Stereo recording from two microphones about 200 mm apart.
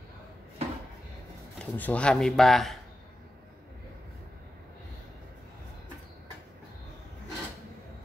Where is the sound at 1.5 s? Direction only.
5° left (ahead or behind).